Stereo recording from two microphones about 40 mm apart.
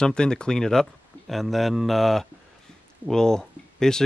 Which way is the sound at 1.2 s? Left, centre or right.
Centre.